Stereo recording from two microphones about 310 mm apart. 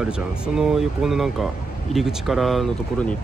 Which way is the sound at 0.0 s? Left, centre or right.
Centre.